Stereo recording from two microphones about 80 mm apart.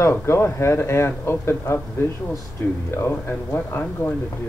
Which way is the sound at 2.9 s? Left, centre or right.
Left.